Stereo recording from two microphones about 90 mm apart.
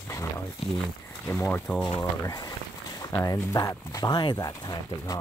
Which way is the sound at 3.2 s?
40° left (ahead or behind).